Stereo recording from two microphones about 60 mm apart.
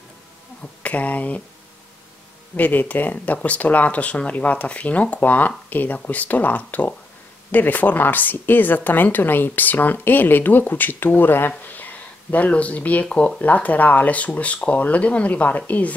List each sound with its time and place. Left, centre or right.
0.8 s speech: left
2.5 s speech: left